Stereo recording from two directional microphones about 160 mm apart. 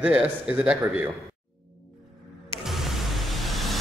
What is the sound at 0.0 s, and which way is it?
A man's voice, 10° right (ahead or behind).